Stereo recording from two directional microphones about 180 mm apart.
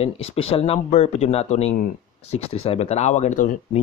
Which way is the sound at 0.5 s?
30° left (ahead or behind).